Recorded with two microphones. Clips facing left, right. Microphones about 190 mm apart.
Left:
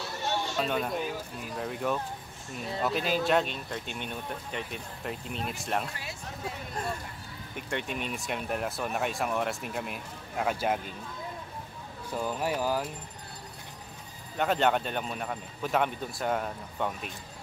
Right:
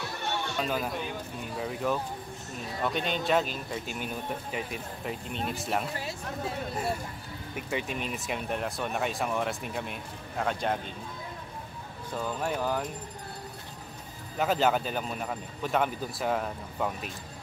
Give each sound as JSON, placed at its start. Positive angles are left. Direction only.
{"t": 0.2, "sound": "a sound", "side_deg": -60}
{"t": 0.6, "sound": "speech", "side_deg": 0}
{"t": 12.1, "sound": "speech", "side_deg": 10}
{"t": 14.3, "sound": "speech", "side_deg": 0}